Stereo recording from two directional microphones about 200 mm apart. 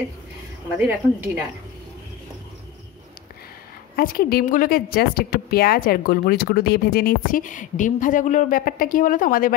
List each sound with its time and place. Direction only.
0.7 s a woman's voice: 5° right (ahead or behind)
3.9 s a woman's voice: 50° left (ahead or behind)